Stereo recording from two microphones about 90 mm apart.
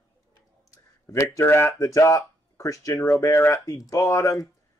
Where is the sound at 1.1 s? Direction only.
30° left (ahead or behind).